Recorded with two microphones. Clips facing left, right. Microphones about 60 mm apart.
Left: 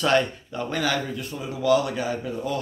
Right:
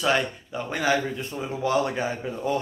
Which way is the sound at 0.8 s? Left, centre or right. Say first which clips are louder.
Right 4 dB; right.